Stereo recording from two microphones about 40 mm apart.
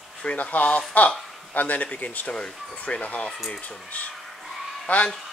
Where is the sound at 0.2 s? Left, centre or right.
Left.